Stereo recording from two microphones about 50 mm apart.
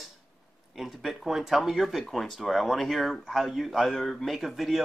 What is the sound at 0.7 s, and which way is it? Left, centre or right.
Speech, centre.